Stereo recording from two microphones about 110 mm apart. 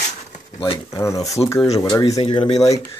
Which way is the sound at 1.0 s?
30° left (ahead or behind).